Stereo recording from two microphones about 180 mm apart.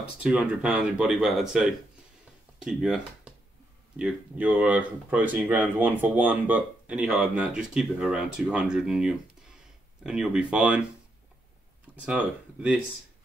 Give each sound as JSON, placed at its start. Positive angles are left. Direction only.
{"t": 0.2, "sound": "speech", "side_deg": -5}
{"t": 12.0, "sound": "speech", "side_deg": -5}